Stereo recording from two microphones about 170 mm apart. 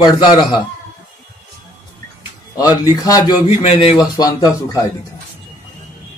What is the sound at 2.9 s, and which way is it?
Speech, 20° left (ahead or behind).